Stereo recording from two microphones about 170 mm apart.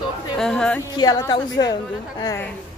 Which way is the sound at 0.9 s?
20° left (ahead or behind).